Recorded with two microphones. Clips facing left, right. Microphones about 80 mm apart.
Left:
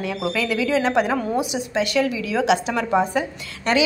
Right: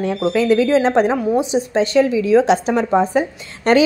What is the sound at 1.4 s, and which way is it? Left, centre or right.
A woman's voice, right.